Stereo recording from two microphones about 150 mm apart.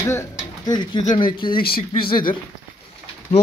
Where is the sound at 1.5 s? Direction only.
80° left.